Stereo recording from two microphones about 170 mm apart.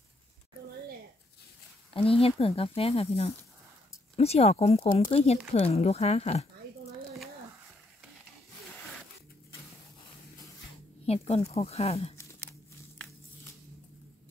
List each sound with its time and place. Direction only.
2.0 s speech: 35° left (ahead or behind)
11.1 s speech: 35° left (ahead or behind)
12.2 s a sound: 15° left (ahead or behind)